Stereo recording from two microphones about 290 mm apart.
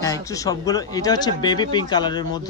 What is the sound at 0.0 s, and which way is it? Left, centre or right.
Speech, centre.